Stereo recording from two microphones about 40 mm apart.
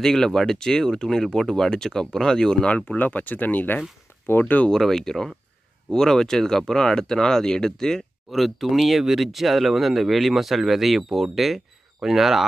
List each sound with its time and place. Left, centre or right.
0.0 s speech: centre
2.6 s speech: left
3.0 s speech: left
4.6 s speech: centre
8.3 s speech: centre